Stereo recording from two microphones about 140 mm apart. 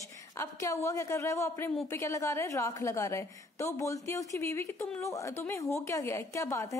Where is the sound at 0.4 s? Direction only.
20° left (ahead or behind).